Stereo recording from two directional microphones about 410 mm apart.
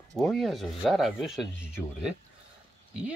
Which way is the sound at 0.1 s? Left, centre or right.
Centre.